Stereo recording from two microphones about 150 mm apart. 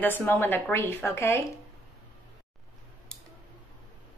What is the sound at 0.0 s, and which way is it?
Speech, 10° left (ahead or behind).